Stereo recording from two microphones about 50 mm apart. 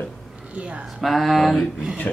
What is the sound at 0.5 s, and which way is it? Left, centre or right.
Speech, right.